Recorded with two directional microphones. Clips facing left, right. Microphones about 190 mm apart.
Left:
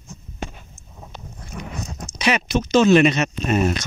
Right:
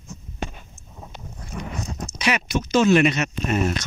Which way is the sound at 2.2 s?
25° left (ahead or behind).